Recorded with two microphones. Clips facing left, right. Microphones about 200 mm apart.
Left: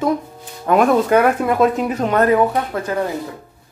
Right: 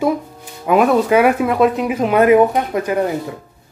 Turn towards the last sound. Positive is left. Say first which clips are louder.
# right 3 dB
turn(degrees=-15)  # may be behind; listen again after turning